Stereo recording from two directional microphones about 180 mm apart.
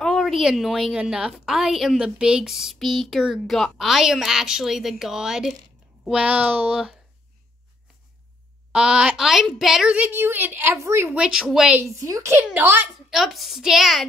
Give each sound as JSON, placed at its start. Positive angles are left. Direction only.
{"t": 0.0, "sound": "a woman's voice", "side_deg": 0}
{"t": 8.7, "sound": "a woman's voice", "side_deg": -5}
{"t": 11.8, "sound": "a woman's voice", "side_deg": -15}